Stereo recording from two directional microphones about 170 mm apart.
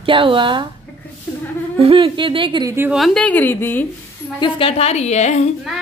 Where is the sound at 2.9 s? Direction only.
Centre (ahead or behind).